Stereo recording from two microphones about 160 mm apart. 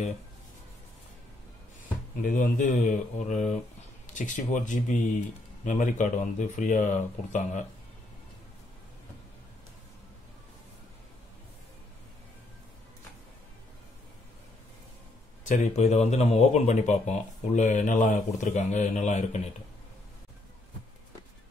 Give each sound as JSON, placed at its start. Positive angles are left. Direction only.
{"t": 2.2, "sound": "speech", "side_deg": 55}
{"t": 15.4, "sound": "speech", "side_deg": 45}